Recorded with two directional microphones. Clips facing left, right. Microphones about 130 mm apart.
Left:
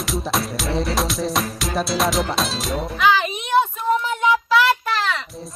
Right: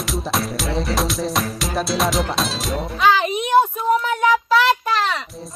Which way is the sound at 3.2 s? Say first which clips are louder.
Right 3 dB; 45° right (ahead or behind).